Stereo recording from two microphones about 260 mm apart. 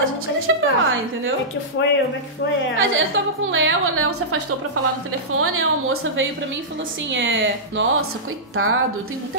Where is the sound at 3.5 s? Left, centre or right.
Right.